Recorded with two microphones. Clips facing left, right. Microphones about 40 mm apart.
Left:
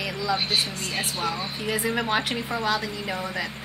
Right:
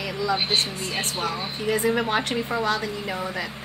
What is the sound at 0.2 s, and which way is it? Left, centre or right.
Speech, centre.